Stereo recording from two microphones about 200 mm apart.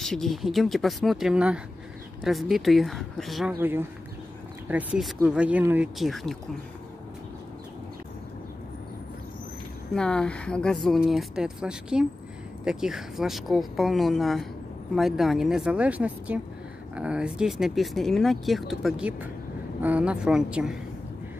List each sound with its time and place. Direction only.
0.0 s speech: centre (ahead or behind)
3.5 s speech: 10° right (ahead or behind)
9.9 s speech: 5° left (ahead or behind)